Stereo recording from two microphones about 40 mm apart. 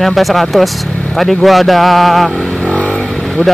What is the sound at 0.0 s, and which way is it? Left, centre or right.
Speech, centre.